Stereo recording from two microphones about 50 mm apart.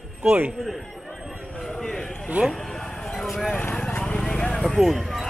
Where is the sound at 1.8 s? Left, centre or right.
Centre.